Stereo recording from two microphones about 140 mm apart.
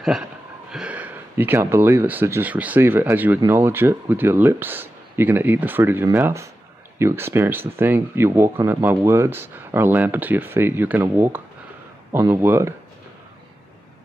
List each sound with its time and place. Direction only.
0.7 s speech: 5° right (ahead or behind)